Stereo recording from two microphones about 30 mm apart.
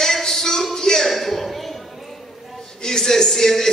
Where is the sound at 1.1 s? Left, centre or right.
Centre.